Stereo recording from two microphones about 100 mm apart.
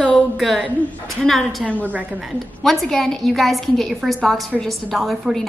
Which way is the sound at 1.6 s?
15° left (ahead or behind).